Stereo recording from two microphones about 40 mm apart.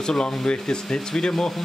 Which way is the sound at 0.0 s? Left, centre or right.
Left.